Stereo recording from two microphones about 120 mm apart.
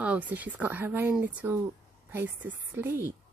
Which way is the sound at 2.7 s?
20° right (ahead or behind).